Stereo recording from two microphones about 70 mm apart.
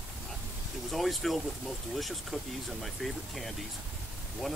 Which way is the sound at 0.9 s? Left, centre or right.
Centre.